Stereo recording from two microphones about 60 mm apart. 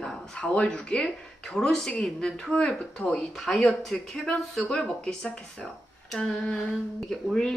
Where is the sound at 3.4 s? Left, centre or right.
Centre.